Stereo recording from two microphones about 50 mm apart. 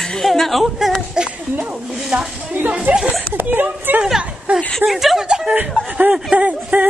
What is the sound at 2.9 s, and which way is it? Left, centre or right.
Speech, right.